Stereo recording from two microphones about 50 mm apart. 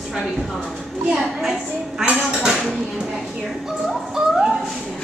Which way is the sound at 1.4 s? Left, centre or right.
Centre.